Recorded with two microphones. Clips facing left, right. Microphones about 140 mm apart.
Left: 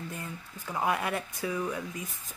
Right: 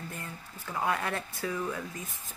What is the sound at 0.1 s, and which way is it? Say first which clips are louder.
Speech: left 2 dB; 20° left (ahead or behind).